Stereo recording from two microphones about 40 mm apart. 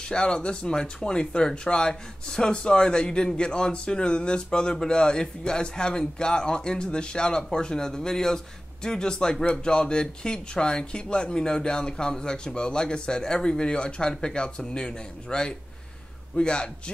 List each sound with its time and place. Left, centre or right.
0.1 s speech: left